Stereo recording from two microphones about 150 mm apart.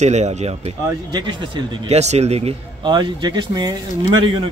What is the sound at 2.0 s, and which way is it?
Speech, 45° right (ahead or behind).